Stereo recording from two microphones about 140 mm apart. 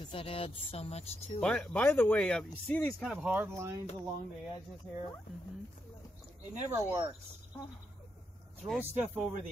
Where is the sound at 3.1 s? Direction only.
10° right (ahead or behind).